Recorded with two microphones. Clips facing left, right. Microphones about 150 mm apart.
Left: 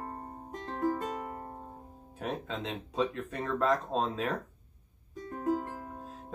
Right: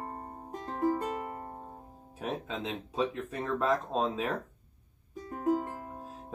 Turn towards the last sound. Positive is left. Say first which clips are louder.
# even
turn(degrees=-10)  # may be behind; listen again after turning